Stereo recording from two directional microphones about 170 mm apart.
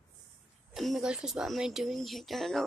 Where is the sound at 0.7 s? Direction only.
Centre (ahead or behind).